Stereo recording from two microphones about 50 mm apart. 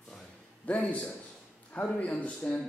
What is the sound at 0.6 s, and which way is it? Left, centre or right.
A man's voice, left.